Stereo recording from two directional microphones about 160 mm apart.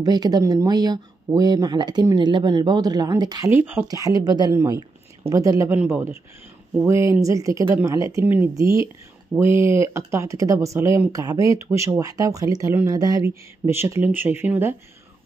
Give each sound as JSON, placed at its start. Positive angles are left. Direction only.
{"t": 0.0, "sound": "speech", "side_deg": -25}